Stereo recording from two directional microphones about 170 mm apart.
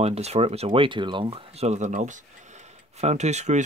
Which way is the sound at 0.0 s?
40° right (ahead or behind).